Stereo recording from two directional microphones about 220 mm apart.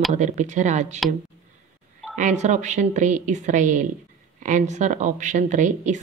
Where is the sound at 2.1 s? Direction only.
35° right (ahead or behind).